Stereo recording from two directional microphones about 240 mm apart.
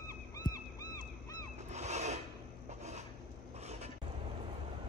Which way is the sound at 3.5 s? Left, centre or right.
Right.